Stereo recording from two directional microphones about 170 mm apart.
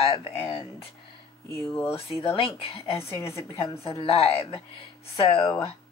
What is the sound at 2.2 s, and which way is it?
Speech, 35° left (ahead or behind).